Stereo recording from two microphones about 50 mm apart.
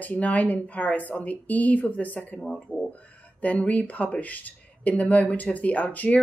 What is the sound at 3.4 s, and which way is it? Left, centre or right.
Speech, left.